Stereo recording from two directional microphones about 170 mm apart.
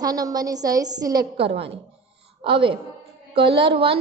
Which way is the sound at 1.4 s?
35° right (ahead or behind).